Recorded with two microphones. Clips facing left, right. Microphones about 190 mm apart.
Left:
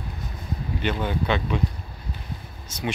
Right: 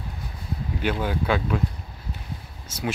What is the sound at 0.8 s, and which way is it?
Speech, 5° right (ahead or behind).